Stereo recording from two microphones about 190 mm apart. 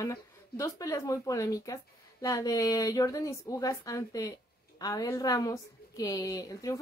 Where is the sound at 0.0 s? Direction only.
15° left (ahead or behind).